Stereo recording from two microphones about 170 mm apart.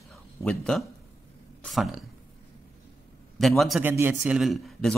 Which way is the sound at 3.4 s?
Centre (ahead or behind).